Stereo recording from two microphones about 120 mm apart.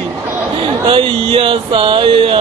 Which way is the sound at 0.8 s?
45° right (ahead or behind).